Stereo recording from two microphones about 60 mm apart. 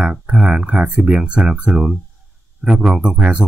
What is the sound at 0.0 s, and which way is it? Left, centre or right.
Speech, right.